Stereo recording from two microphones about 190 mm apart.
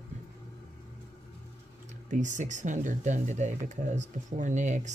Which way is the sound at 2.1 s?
40° right (ahead or behind).